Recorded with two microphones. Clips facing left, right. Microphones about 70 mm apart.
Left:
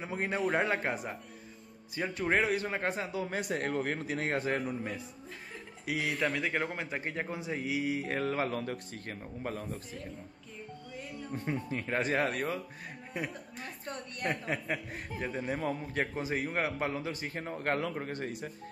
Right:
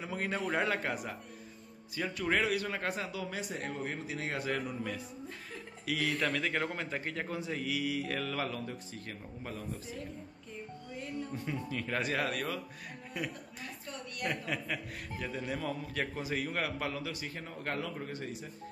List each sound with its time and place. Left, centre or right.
0.0 s a man's voice: left
3.3 s a man's voice: left
11.3 s a man's voice: left